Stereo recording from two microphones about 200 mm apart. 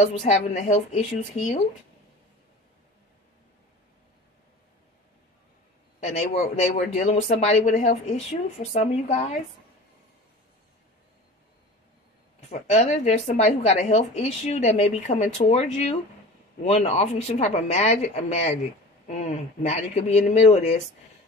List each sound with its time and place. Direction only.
0.0 s a woman's voice: 35° left (ahead or behind)
6.0 s a woman's voice: 30° left (ahead or behind)
12.4 s a woman's voice: 35° left (ahead or behind)